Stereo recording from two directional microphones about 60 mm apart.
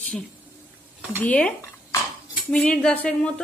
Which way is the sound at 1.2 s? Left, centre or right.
Left.